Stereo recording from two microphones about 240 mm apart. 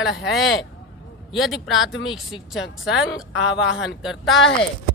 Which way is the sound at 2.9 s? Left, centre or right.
Left.